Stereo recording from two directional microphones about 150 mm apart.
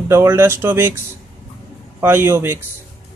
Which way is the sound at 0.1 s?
15° right (ahead or behind).